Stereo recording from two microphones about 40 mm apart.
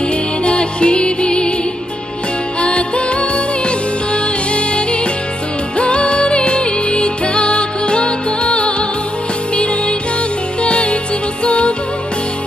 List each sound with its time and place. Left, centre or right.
0.5 s music: left
2.6 s music: left
10.6 s music: left